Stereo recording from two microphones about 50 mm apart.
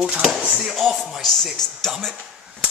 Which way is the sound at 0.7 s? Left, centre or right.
Centre.